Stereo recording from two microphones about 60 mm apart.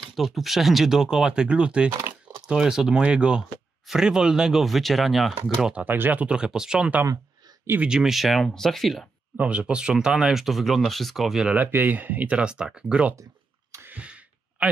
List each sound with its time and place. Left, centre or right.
0.1 s speech: centre
5.9 s speech: right
6.3 s speech: centre
9.4 s speech: centre
11.5 s speech: right; by 12.8 s centre
13.1 s a sound: right
13.9 s a sound: right